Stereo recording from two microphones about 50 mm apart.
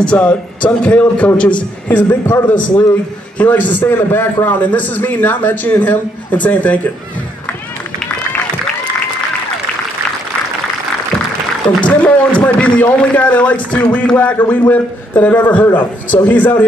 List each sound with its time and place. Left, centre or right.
0.0 s a man's voice: left
2.0 s a man's voice: left
2.5 s a man's voice: left
3.8 s a man's voice: left
11.8 s a man's voice: left